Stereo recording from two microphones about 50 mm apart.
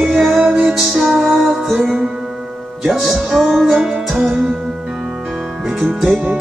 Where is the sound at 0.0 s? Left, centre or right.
Centre.